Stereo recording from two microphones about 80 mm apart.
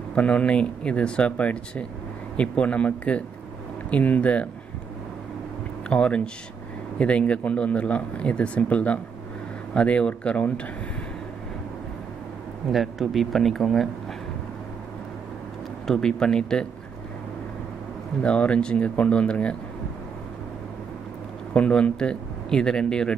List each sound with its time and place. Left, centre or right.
0.1 s speech: centre
5.9 s speech: centre
12.7 s speech: centre
15.9 s speech: centre
18.2 s speech: centre
21.5 s speech: centre